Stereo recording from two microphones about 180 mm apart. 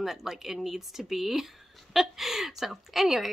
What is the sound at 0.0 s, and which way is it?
Speech, centre (ahead or behind).